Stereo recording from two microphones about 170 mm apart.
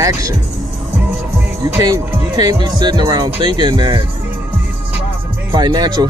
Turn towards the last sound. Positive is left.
turn(degrees=-25)  # may be behind; listen again after turning